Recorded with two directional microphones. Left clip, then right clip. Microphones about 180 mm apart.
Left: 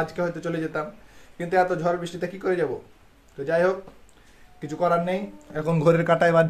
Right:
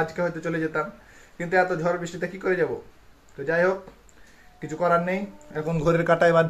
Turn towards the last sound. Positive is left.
turn(degrees=10)  # may be behind; listen again after turning